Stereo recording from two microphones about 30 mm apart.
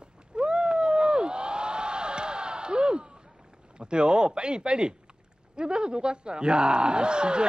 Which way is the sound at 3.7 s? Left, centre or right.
Right.